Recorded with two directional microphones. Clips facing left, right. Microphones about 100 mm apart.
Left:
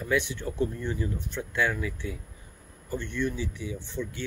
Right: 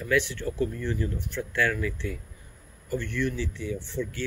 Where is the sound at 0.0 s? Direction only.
20° left (ahead or behind).